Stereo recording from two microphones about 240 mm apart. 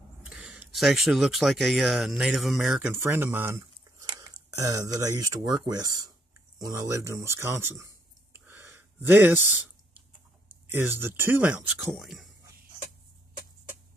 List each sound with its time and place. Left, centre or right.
0.2 s speech: centre
10.7 s speech: centre